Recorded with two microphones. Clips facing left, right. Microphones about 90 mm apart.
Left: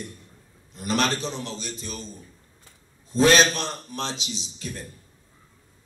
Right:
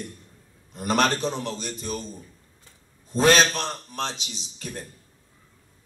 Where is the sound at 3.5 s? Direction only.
50° right (ahead or behind).